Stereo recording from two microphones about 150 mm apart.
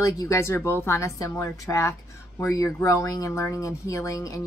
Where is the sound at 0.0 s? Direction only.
20° left (ahead or behind).